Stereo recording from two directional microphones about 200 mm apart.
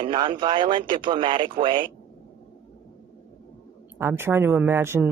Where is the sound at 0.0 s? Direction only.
25° right (ahead or behind).